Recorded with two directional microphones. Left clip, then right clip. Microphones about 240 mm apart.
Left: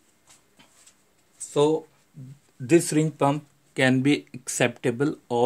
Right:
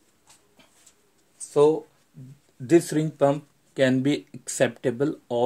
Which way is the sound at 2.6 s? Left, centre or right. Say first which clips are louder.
Even; centre.